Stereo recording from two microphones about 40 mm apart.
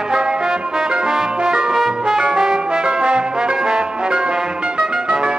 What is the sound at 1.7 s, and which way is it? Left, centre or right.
Brass instrument, centre.